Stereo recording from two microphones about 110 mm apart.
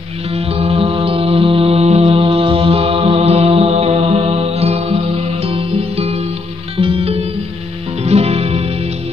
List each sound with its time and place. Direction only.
0.5 s mantra: 65° right (ahead or behind)
6.8 s music: 60° right (ahead or behind)
8.0 s music: 70° right (ahead or behind)